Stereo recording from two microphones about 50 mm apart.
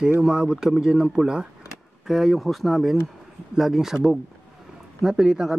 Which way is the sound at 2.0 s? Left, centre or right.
Centre.